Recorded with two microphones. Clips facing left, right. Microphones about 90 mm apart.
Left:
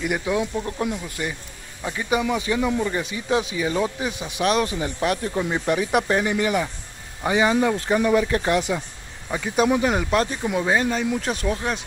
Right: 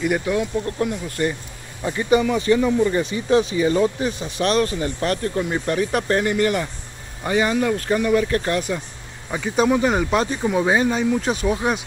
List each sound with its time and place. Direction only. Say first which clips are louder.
0.0 s speech: right 2 dB; 15° left (ahead or behind)
9.3 s speech: right 2 dB; centre (ahead or behind)